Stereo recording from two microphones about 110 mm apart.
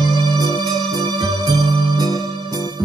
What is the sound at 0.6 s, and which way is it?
Organ, 40° right (ahead or behind).